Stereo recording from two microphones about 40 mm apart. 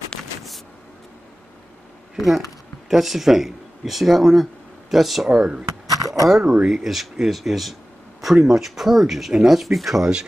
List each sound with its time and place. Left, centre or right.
2.1 s speech: centre
5.3 s speech: centre